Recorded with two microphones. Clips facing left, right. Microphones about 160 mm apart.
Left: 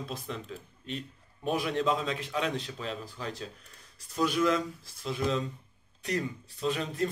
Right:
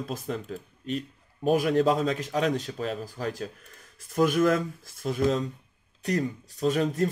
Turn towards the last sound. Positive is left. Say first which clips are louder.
# right 6 dB
turn(degrees=-40)  # may be behind; listen again after turning